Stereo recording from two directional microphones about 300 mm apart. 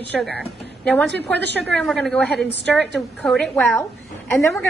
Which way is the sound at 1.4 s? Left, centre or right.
Right.